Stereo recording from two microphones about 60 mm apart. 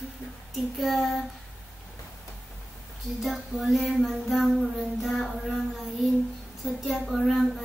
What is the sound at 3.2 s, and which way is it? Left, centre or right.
Child singing, centre.